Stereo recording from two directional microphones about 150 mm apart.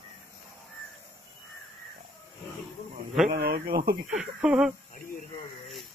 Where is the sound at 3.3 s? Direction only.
85° right.